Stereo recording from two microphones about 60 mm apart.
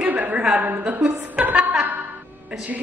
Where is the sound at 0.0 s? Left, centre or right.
Right.